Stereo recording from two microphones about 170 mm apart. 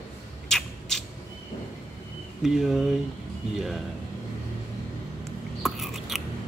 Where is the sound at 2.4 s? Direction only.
Centre (ahead or behind).